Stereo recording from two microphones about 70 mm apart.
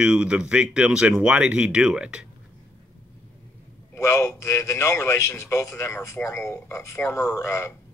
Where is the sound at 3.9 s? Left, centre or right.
Left.